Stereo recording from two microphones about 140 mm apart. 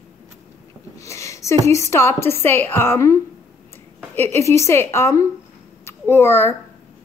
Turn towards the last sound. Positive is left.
turn(degrees=15)  # may be behind; listen again after turning